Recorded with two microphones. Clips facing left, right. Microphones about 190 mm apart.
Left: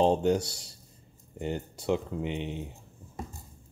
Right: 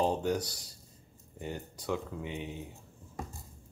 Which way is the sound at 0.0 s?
25° left (ahead or behind).